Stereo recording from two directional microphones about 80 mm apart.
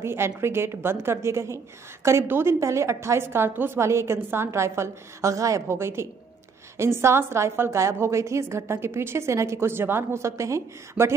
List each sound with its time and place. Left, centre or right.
0.0 s a woman's voice: right